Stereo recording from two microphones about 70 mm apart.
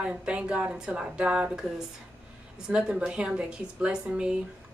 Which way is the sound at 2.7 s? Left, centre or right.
Centre.